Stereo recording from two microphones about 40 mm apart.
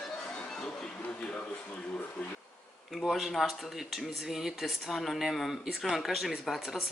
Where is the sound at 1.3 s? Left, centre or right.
Left.